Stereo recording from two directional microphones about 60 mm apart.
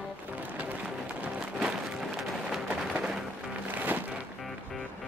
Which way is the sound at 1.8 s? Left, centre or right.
Centre.